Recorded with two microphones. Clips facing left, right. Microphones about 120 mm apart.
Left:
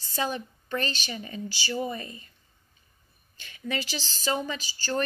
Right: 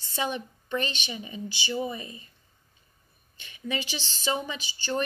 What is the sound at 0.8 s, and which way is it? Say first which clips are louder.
Speech: even; 35° left (ahead or behind).